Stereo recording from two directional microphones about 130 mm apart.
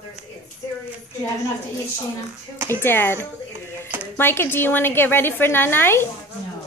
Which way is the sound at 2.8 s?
15° left (ahead or behind).